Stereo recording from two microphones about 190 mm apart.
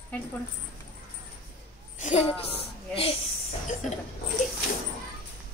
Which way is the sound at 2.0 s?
40° left (ahead or behind).